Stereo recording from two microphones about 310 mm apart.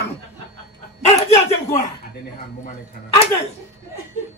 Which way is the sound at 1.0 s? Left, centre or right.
Left.